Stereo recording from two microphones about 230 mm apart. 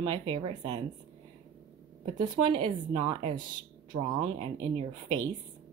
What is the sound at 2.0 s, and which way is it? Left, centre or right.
Speech, centre.